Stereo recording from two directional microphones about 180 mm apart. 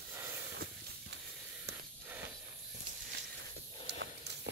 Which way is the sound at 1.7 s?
70° right (ahead or behind).